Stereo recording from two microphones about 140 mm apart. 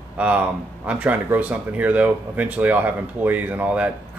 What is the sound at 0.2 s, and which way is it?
Speech, 10° right (ahead or behind).